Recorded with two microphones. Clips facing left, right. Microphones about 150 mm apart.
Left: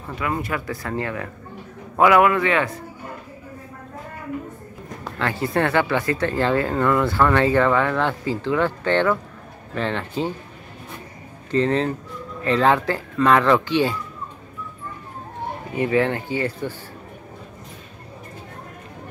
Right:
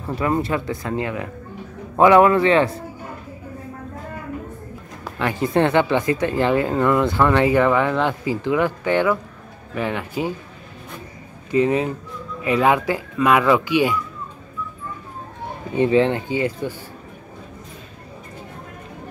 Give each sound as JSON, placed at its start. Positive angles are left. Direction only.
{"t": 0.1, "sound": "speech", "side_deg": -30}
{"t": 2.0, "sound": "a man's voice", "side_deg": -30}
{"t": 5.0, "sound": "speech", "side_deg": -15}
{"t": 11.5, "sound": "speech", "side_deg": -10}
{"t": 15.7, "sound": "speech", "side_deg": -20}